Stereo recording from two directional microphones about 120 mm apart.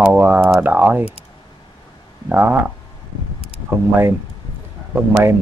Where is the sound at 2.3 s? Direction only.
15° right (ahead or behind).